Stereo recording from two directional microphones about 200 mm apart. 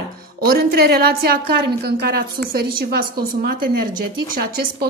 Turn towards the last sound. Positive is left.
turn(degrees=-45)  # may be behind; listen again after turning